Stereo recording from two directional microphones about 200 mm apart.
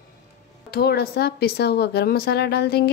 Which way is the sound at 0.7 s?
50° left (ahead or behind).